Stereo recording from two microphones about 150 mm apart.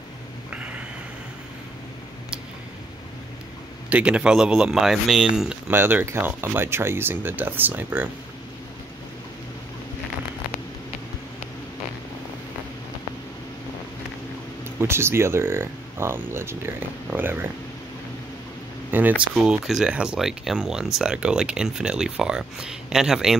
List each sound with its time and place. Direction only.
3.9 s speech: 5° right (ahead or behind)
14.8 s speech: 15° right (ahead or behind)
18.9 s speech: 10° right (ahead or behind)